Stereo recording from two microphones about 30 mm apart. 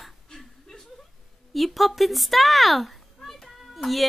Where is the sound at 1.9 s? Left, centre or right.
Centre.